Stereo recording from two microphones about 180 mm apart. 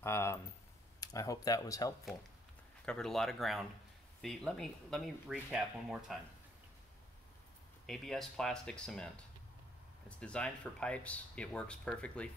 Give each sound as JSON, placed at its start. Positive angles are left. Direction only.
{"t": 0.0, "sound": "speech", "side_deg": 15}
{"t": 2.8, "sound": "speech", "side_deg": 5}
{"t": 7.8, "sound": "speech", "side_deg": 0}